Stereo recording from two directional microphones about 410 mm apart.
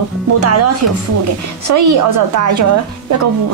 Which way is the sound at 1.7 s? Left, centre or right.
Right.